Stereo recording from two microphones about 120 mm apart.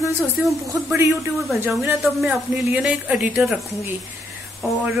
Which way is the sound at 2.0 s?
5° right (ahead or behind).